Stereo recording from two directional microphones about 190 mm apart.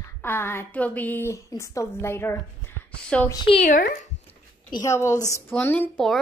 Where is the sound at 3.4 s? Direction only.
35° left (ahead or behind).